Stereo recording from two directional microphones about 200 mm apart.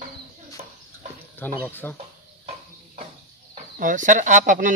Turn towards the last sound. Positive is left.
turn(degrees=-40)  # may be behind; listen again after turning